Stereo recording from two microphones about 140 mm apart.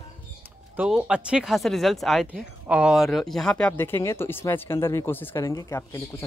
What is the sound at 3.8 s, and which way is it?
Speech, 20° left (ahead or behind).